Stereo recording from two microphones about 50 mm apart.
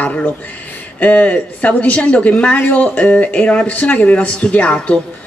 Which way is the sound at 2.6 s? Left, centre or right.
Left.